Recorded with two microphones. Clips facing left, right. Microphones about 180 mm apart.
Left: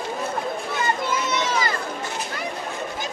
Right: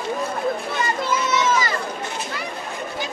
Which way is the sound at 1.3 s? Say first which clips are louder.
Right 3 dB; 50° left (ahead or behind).